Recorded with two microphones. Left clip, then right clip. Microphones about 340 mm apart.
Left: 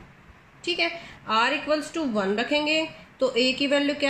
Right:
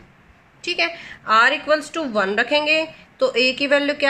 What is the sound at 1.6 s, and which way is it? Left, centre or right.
Speech, right.